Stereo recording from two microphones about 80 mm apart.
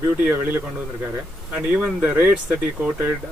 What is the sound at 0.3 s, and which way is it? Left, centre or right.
Speech, right.